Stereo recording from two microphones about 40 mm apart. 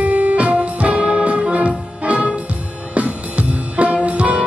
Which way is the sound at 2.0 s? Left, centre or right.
Right.